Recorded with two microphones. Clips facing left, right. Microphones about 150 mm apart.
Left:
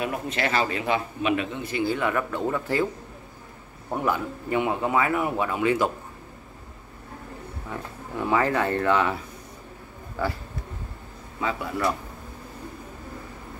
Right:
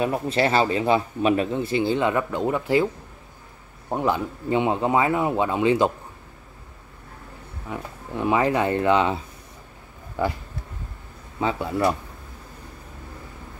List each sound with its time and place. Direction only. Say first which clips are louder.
0.0 s a man's voice: right 5 dB; 35° right (ahead or behind); by 2.9 s 15° right (ahead or behind)
3.9 s a man's voice: right 3 dB; 25° right (ahead or behind)
7.7 s a man's voice: right 3 dB; 20° right (ahead or behind)